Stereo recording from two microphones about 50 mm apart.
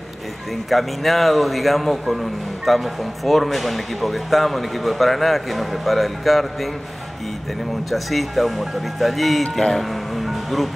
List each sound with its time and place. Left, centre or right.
0.7 s a man's voice: centre
7.9 s a man's voice: centre